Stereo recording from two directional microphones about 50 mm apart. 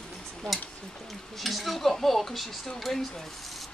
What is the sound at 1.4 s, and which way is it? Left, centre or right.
Speech, centre.